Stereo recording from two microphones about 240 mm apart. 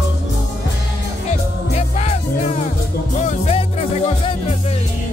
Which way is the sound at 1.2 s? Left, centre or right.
Left.